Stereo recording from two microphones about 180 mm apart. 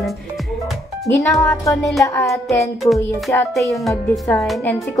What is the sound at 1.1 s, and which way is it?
Speech, 15° left (ahead or behind).